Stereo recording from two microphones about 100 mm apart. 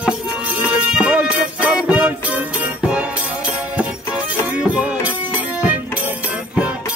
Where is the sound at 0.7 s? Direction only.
10° right (ahead or behind).